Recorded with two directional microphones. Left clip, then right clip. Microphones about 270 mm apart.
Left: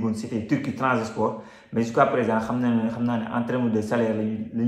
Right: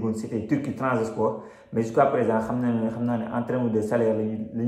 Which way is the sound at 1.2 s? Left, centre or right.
Centre.